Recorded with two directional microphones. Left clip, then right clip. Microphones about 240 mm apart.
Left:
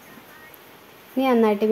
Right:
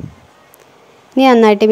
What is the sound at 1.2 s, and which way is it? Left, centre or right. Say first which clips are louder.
Speech: right 10 dB; right.